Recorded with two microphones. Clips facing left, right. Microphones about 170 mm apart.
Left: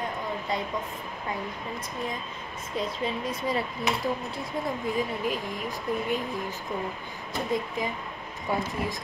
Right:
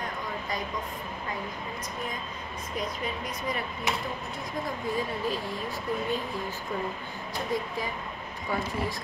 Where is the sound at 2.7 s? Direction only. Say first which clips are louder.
Left 4 dB; 30° left (ahead or behind).